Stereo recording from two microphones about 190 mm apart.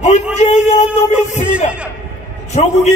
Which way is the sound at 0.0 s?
35° left (ahead or behind).